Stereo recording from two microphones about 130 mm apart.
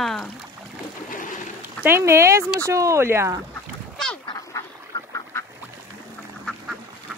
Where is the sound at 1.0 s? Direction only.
90° left.